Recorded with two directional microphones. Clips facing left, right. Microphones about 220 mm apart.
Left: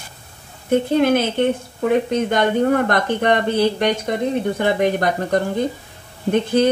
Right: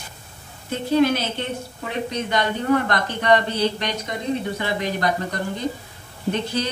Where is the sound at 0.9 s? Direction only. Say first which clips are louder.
Right 2 dB; 55° left (ahead or behind).